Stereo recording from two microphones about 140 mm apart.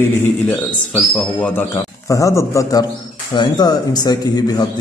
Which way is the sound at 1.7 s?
20° left (ahead or behind).